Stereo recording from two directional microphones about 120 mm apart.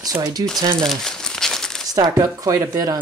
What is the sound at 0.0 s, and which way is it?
Speech, 30° right (ahead or behind).